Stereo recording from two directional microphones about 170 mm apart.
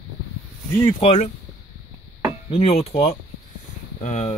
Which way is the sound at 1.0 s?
35° left (ahead or behind).